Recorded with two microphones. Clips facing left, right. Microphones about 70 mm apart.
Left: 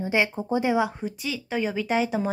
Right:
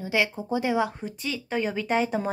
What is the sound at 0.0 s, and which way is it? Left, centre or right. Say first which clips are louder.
Speech: left 2 dB; left.